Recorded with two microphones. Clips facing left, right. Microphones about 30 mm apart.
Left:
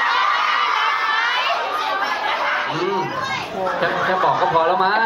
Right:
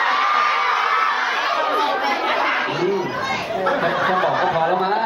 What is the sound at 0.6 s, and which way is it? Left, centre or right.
Crowd, left.